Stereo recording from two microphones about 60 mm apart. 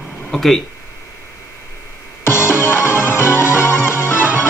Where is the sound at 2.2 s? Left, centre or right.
Left.